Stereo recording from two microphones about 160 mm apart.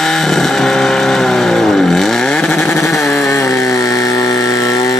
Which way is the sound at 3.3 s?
20° left (ahead or behind).